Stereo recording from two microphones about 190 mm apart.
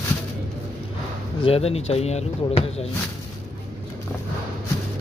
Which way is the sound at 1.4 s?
30° left (ahead or behind).